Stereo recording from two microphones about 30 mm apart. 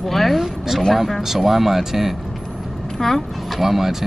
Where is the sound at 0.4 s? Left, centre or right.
Centre.